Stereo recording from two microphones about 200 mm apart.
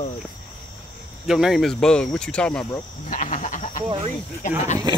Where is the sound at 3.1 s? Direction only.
40° left (ahead or behind).